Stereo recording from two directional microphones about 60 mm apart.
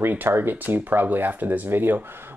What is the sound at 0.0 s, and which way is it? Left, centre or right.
Speech, right.